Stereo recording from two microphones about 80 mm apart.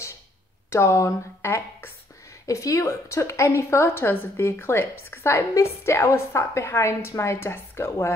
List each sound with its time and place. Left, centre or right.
0.7 s a woman's voice: left
2.4 s a woman's voice: left